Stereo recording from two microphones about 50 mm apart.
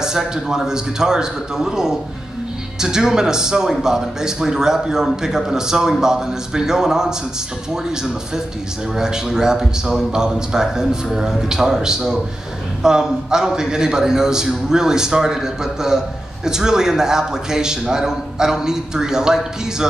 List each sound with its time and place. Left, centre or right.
0.0 s a man's voice: centre